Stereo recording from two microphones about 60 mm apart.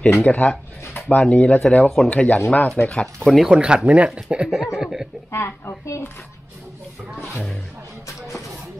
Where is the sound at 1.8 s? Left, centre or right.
Centre.